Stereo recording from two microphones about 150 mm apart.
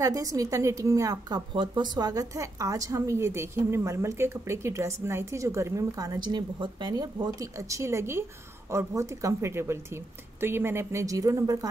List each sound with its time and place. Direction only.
0.0 s a woman's voice: 20° right (ahead or behind)